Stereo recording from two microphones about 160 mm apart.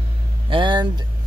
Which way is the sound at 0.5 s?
30° right (ahead or behind).